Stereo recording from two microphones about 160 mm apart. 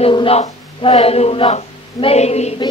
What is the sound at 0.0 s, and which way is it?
Speech, 35° left (ahead or behind).